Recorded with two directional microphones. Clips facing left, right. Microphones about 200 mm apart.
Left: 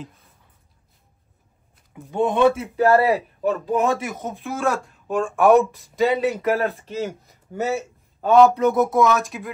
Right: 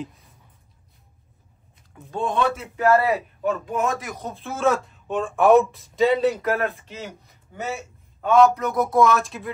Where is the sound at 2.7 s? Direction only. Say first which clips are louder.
Left 2 dB; 35° left (ahead or behind).